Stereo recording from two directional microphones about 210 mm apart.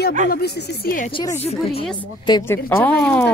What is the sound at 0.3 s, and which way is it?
Speech, 45° left (ahead or behind).